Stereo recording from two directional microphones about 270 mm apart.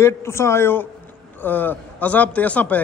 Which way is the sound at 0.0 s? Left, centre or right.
Centre.